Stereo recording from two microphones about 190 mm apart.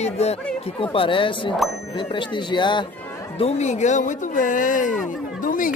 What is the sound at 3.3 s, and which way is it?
Speech, 35° left (ahead or behind).